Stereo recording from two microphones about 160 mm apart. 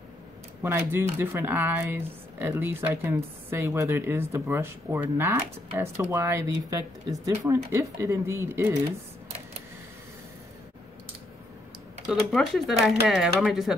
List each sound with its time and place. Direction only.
0.6 s speech: 15° right (ahead or behind)
12.1 s speech: centre (ahead or behind)